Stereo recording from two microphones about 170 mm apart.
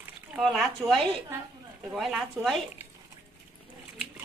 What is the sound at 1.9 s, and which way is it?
Speech, centre (ahead or behind).